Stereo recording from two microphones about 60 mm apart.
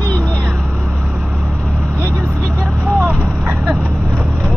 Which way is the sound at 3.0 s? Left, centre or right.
Right.